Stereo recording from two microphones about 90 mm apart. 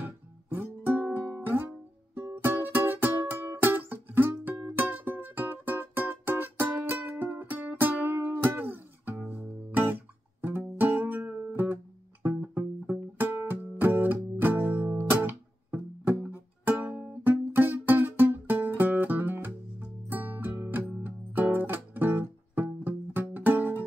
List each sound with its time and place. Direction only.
0.0 s music: 20° right (ahead or behind)